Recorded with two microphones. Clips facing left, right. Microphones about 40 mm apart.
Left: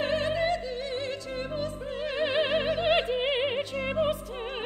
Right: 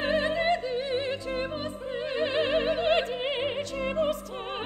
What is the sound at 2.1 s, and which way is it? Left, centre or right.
Opera, centre.